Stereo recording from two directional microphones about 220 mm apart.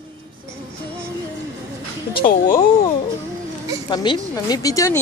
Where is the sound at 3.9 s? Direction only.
20° left (ahead or behind).